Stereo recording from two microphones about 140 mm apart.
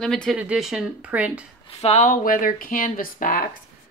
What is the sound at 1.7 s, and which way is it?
Speech, 50° left (ahead or behind).